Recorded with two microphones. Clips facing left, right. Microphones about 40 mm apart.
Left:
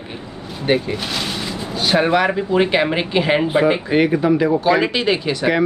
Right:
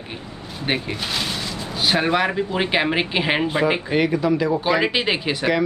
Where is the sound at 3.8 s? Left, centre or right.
Centre.